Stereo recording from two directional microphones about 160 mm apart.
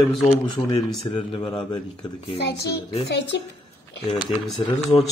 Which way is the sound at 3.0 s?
90° left.